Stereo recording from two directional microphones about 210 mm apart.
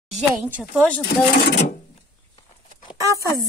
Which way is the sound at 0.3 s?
5° right (ahead or behind).